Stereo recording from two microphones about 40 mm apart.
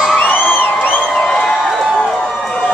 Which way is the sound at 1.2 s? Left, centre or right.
Centre.